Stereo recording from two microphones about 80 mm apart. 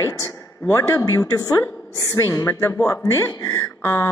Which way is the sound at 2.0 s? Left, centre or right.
Left.